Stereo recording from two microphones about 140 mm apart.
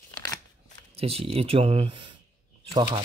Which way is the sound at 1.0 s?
45° right (ahead or behind).